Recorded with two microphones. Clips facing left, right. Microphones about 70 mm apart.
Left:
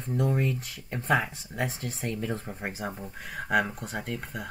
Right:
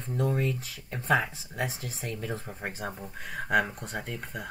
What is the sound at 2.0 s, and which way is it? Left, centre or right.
Speech, left.